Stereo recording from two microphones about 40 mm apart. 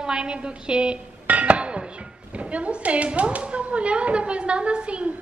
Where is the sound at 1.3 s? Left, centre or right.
Right.